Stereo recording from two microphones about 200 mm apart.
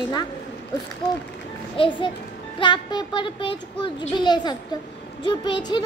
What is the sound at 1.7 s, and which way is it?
A child's voice, 25° left (ahead or behind).